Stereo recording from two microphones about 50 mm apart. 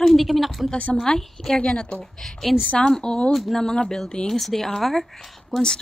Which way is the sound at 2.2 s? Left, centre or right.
Centre.